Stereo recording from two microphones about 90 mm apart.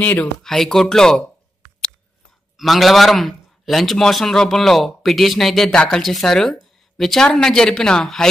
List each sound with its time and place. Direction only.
0.0 s speech: 15° left (ahead or behind)
0.4 s a man's voice: 5° left (ahead or behind)
2.5 s a man's voice: centre (ahead or behind)